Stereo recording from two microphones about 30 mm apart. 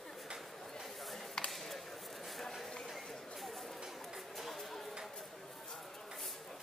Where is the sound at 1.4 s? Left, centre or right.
Left.